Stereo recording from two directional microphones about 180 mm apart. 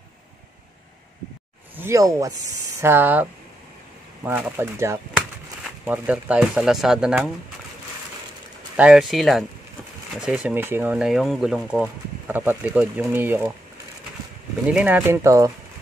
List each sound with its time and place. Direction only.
1.8 s speech: 15° right (ahead or behind)
8.7 s speech: 5° right (ahead or behind)
14.7 s speech: 5° right (ahead or behind)